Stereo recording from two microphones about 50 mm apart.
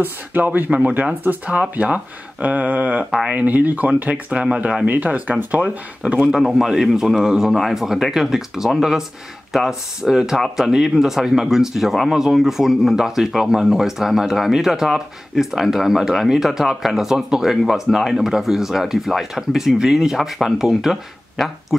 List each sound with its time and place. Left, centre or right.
0.0 s speech: right
0.7 s speech: right
4.8 s speech: right
6.3 s speech: centre